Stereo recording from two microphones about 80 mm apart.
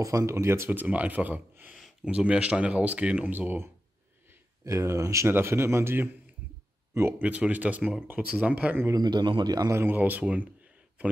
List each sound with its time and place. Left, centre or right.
0.0 s a man's voice: right
0.7 s speech: centre
4.6 s a man's voice: right
7.2 s speech: centre
8.9 s a man's voice: right
9.7 s speech: right